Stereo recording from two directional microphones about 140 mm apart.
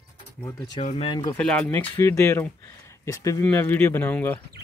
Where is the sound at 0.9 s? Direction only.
40° left (ahead or behind).